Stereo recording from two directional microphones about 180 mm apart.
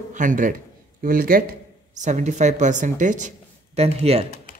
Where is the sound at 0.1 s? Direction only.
45° right (ahead or behind).